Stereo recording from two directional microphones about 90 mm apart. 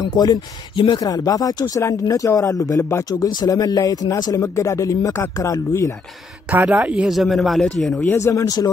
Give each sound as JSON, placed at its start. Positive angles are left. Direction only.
{"t": 0.0, "sound": "speech", "side_deg": 50}
{"t": 3.3, "sound": "speech", "side_deg": 50}
{"t": 6.5, "sound": "speech", "side_deg": -20}
{"t": 7.1, "sound": "speech", "side_deg": 0}
{"t": 8.0, "sound": "speech", "side_deg": 30}